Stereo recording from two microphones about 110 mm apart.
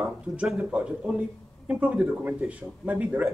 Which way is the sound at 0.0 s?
5° right (ahead or behind).